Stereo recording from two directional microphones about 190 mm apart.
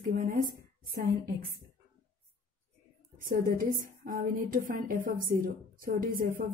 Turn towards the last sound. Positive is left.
turn(degrees=-50)  # may be behind; listen again after turning